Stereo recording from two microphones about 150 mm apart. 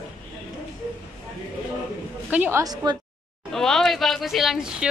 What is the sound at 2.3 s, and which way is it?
Speech, 15° right (ahead or behind).